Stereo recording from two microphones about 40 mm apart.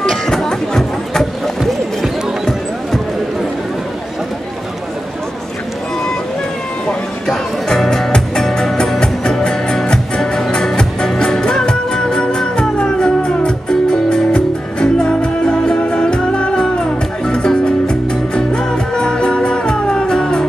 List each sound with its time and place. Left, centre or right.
0.3 s music: centre
7.2 s music: centre
9.0 s music: centre